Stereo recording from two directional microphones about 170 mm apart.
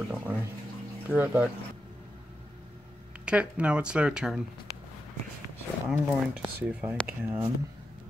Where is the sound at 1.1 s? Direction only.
10° right (ahead or behind).